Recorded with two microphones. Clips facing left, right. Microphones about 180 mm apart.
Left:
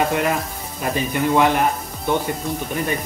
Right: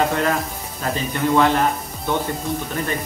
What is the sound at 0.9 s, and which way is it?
Speech, 15° left (ahead or behind).